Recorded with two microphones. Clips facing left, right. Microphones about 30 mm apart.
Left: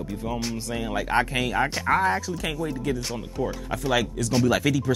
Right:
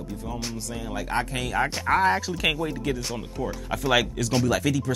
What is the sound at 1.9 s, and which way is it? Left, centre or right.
Speech, right.